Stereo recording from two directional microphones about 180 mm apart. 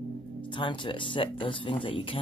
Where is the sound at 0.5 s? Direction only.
25° left (ahead or behind).